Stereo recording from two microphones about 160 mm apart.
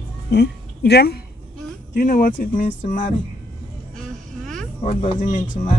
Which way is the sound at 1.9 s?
60° left (ahead or behind).